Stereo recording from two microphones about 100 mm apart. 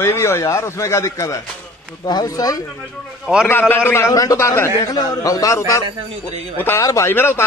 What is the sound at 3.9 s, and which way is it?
A man's voice, 30° left (ahead or behind).